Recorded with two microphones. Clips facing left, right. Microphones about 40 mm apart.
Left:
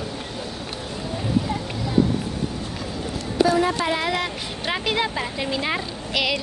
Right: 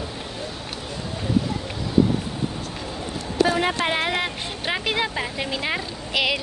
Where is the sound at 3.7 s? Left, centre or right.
Right.